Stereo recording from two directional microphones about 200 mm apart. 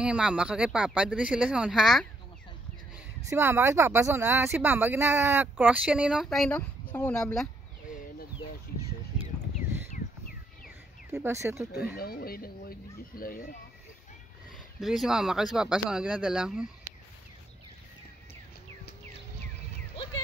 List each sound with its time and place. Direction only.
0.0 s speech: 5° right (ahead or behind)
3.3 s speech: 15° right (ahead or behind); by 7.4 s 10° left (ahead or behind)
11.1 s speech: 15° right (ahead or behind)
12.0 s speech: 50° left (ahead or behind)
14.8 s speech: centre (ahead or behind)